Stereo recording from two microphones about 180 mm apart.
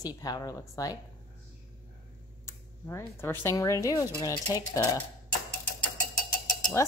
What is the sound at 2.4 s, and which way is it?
Speech, 15° left (ahead or behind).